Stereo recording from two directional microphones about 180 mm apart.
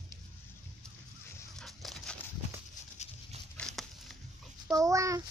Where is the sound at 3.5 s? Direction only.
Centre (ahead or behind).